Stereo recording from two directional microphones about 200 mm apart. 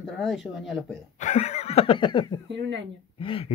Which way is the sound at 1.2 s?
35° left (ahead or behind).